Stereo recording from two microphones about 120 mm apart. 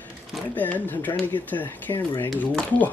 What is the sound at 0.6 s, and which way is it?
Speech, 15° left (ahead or behind).